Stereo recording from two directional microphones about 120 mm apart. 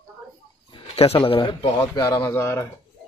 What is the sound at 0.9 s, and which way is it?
Speech, 50° left (ahead or behind).